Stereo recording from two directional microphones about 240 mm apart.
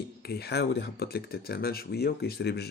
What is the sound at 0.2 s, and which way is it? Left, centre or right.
Speech, left.